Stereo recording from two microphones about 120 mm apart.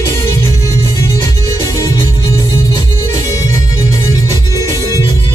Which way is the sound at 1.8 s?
30° left (ahead or behind).